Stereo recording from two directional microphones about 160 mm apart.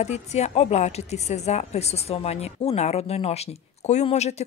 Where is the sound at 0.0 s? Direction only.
45° left (ahead or behind).